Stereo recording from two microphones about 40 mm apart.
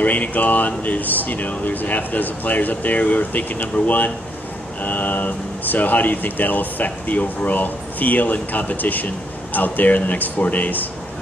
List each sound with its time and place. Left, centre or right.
0.0 s speech: left